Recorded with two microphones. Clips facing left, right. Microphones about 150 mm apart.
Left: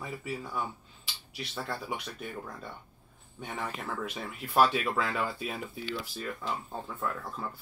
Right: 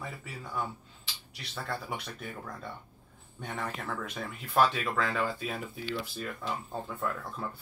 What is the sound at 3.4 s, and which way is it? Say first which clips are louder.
Speech: even; 5° left (ahead or behind).